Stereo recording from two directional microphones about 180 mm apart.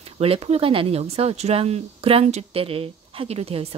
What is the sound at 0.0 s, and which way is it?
Speech, 35° right (ahead or behind).